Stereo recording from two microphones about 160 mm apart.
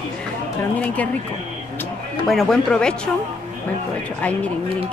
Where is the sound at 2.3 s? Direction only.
Centre (ahead or behind).